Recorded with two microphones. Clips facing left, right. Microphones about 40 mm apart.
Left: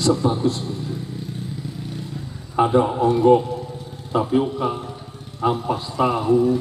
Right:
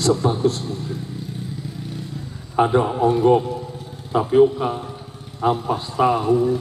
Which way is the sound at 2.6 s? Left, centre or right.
Centre.